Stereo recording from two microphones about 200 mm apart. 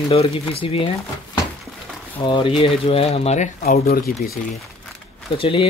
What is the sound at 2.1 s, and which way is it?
Speech, 25° left (ahead or behind).